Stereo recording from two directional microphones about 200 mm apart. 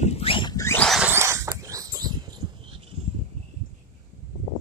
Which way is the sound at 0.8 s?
Centre (ahead or behind).